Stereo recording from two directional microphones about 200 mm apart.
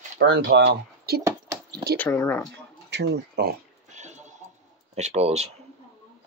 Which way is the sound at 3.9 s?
35° right (ahead or behind).